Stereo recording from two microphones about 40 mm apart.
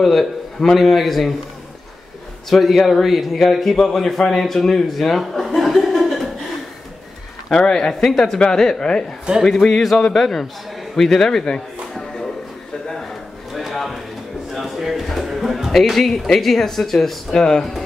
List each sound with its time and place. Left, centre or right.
0.0 s a man's voice: centre
2.5 s a man's voice: centre
5.4 s chuckle: centre
7.4 s speech: centre
9.4 s a man's voice: centre
13.5 s a sound: centre
16.3 s speech: centre